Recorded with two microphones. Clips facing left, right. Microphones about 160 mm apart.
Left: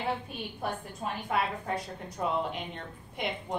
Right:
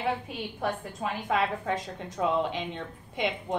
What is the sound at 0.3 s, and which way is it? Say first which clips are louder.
A woman's voice: right 4 dB; 90° right.